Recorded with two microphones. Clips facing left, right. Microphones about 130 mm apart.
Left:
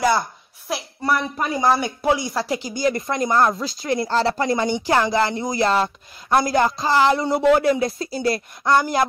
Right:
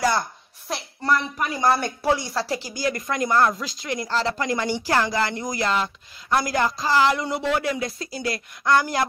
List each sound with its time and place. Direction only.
0.7 s a woman's voice: 10° left (ahead or behind)
1.3 s speech: 25° left (ahead or behind)
1.6 s speech: 10° left (ahead or behind); by 7.3 s 30° left (ahead or behind)
7.3 s speech: 45° left (ahead or behind); by 9.0 s 20° left (ahead or behind)